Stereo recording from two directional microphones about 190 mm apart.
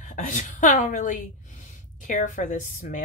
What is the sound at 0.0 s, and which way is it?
A woman's voice, 40° left (ahead or behind).